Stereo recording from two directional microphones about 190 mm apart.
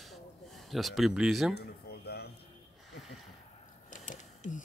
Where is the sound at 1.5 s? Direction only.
60° left (ahead or behind).